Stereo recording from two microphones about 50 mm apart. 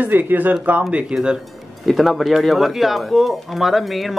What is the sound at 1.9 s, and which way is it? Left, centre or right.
Speech, centre.